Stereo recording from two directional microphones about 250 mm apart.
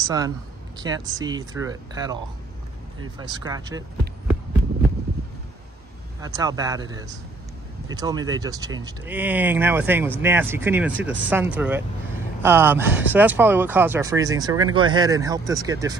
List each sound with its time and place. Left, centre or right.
0.0 s speech: centre
3.2 s speech: centre
6.2 s speech: centre